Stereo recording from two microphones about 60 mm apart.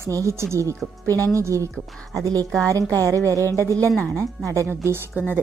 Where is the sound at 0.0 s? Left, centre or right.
Right.